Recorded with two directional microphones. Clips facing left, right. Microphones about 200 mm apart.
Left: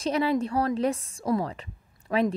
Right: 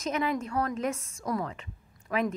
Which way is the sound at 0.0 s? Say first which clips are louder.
Left 5 dB; 30° left (ahead or behind).